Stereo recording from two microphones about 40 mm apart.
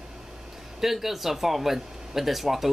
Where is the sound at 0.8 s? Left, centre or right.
Centre.